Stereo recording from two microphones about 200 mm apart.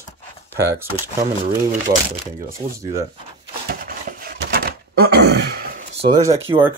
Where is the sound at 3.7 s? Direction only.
45° right (ahead or behind).